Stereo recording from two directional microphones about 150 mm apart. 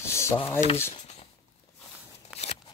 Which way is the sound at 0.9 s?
45° left (ahead or behind).